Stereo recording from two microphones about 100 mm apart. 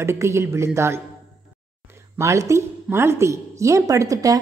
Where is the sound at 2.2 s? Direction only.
30° right (ahead or behind).